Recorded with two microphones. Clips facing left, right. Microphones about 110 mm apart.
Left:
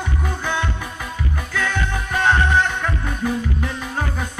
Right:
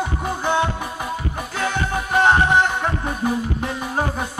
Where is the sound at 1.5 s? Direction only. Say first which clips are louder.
Right 1 dB; 30° right (ahead or behind).